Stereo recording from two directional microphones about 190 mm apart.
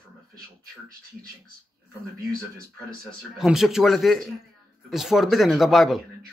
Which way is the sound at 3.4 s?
Centre (ahead or behind).